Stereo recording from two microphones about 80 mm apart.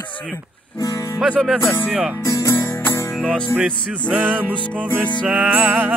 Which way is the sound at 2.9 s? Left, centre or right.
Left.